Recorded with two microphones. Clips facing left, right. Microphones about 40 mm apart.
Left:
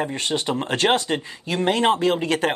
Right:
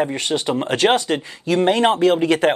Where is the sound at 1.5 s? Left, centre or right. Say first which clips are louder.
Right 4 dB; right.